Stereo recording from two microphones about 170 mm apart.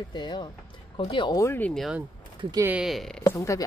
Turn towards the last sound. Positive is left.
turn(degrees=20)  # may be behind; listen again after turning